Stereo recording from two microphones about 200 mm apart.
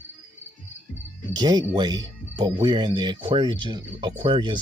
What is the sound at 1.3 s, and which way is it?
Speech, 20° right (ahead or behind).